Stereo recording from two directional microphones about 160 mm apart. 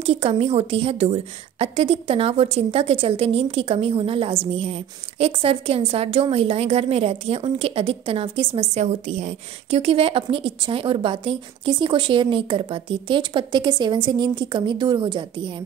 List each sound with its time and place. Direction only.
0.0 s a woman's voice: 40° right (ahead or behind)